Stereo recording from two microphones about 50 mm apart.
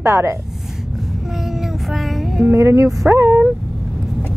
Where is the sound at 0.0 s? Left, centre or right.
Right.